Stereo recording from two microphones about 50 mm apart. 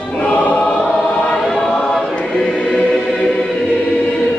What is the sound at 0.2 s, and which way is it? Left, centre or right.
Choir, left.